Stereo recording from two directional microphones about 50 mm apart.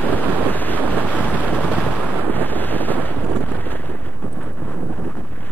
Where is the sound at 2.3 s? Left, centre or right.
Left.